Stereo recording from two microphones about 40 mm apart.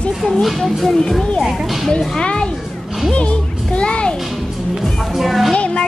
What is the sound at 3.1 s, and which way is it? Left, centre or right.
Music, left.